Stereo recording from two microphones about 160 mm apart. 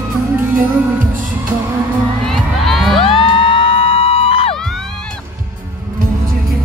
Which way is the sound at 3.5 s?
35° left (ahead or behind).